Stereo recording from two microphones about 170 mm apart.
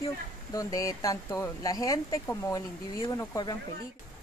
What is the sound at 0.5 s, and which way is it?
Speech, 20° left (ahead or behind).